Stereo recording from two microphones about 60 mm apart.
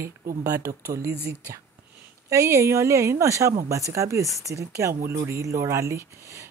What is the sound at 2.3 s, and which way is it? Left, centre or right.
A woman's voice, right.